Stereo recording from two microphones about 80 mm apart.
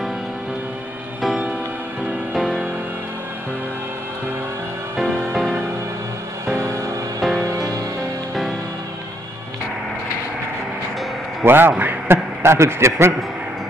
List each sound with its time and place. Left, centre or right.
2.3 s music: centre
4.9 s music: centre
7.2 s music: centre
7.5 s music: right
11.4 s a man's voice: right